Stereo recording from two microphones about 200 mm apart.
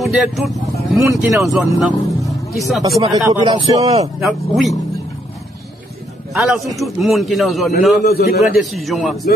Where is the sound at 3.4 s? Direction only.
30° right (ahead or behind).